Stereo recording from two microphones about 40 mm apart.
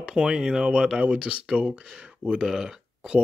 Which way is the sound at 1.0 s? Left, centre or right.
Right.